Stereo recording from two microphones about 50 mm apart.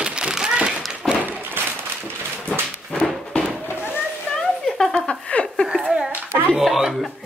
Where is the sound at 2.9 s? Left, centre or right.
Centre.